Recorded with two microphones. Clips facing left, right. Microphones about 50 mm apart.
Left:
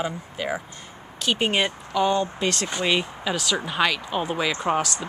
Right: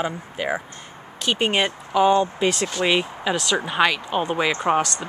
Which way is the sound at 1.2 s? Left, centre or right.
Centre.